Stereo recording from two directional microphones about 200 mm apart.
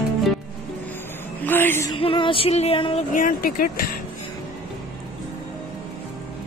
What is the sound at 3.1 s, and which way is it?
Speech, 40° left (ahead or behind).